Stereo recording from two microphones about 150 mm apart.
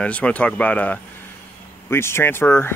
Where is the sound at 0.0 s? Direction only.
10° left (ahead or behind).